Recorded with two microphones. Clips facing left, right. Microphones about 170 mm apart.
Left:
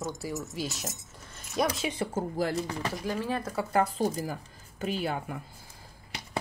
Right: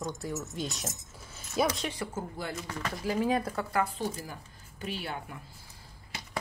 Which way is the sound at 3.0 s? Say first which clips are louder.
Right 5 dB; 15° right (ahead or behind).